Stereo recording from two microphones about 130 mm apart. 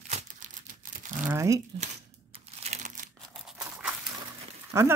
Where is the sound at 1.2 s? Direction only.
20° right (ahead or behind).